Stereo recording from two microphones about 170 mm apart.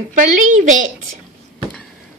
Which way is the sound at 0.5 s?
45° right (ahead or behind).